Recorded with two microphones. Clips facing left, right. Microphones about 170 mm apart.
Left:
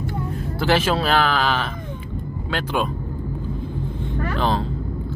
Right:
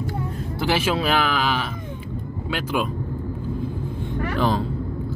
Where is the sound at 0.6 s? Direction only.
10° right (ahead or behind).